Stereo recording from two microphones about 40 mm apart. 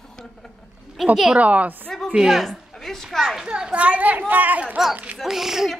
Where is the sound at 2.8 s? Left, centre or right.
Centre.